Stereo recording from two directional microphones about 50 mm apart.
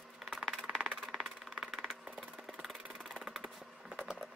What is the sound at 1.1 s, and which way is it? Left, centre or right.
Percussion, centre.